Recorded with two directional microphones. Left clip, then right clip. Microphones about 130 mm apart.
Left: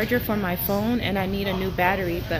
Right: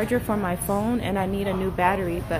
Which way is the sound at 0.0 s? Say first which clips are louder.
Even; 20° right (ahead or behind).